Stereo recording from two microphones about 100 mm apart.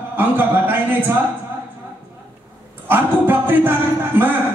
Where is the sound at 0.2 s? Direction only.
20° right (ahead or behind).